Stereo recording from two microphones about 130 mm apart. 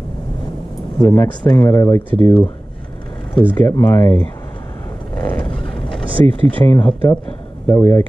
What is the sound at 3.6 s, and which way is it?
Speech, 20° left (ahead or behind).